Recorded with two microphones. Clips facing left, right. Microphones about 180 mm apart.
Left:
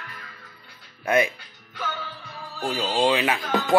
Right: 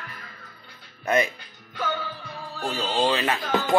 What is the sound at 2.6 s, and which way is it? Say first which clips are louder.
Speech: left 2 dB; 15° left (ahead or behind).